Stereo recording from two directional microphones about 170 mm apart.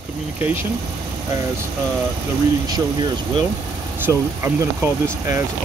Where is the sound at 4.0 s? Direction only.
15° right (ahead or behind).